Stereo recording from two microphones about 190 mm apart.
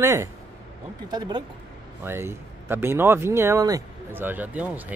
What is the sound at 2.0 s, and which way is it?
Speech, 10° right (ahead or behind).